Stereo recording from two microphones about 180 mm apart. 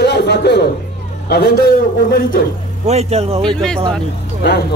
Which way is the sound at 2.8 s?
35° right (ahead or behind).